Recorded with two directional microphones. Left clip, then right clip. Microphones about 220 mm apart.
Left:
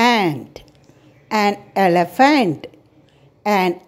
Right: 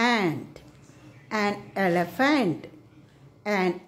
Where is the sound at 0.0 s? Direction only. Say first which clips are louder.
Left 8 dB; 30° left (ahead or behind).